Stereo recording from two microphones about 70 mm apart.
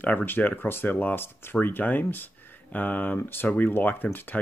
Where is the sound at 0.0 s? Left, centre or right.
Left.